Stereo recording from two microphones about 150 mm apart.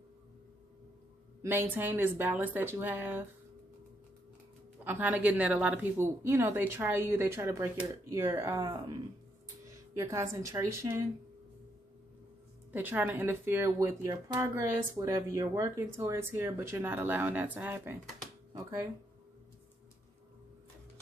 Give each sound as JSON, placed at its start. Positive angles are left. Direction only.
{"t": 1.4, "sound": "speech", "side_deg": -15}
{"t": 4.8, "sound": "speech", "side_deg": -10}
{"t": 12.7, "sound": "speech", "side_deg": -10}
{"t": 14.0, "sound": "speech", "side_deg": -30}
{"t": 14.5, "sound": "speech", "side_deg": -20}